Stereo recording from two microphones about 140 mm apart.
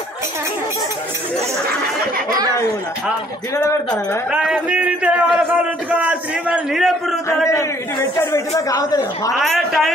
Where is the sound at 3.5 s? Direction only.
20° left (ahead or behind).